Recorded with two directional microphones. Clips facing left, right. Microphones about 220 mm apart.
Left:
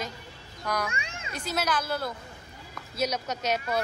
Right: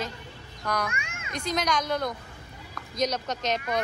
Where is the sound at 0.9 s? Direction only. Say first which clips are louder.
Left 1 dB; 30° left (ahead or behind).